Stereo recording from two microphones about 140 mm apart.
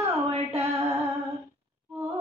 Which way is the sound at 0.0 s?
45° right (ahead or behind).